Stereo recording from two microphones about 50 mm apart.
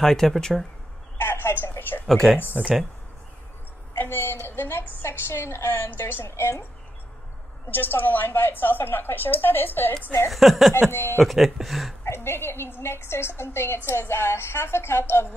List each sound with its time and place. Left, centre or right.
0.0 s speech: centre
1.1 s a sound: left
2.0 s speech: centre
2.6 s speech: centre
3.9 s a woman's voice: left
5.0 s a woman's voice: left
7.7 s a woman's voice: left
10.3 s speech: centre
10.9 s a woman's voice: left
11.2 s speech: centre
12.0 s a woman's voice: left